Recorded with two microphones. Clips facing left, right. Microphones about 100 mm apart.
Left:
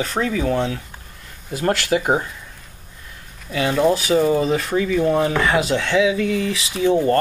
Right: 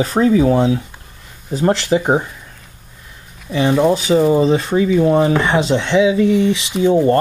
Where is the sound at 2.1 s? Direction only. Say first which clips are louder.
Right 3 dB; 10° right (ahead or behind).